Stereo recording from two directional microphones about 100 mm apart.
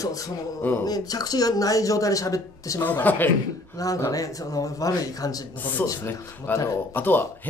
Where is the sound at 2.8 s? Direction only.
15° left (ahead or behind).